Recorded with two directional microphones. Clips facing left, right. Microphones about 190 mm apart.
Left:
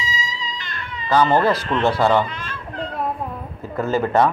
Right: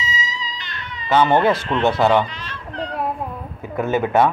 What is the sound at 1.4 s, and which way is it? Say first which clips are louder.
Speech: right 1 dB; centre (ahead or behind).